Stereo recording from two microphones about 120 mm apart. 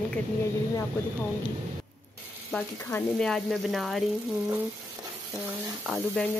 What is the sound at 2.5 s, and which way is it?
Speech, 15° left (ahead or behind).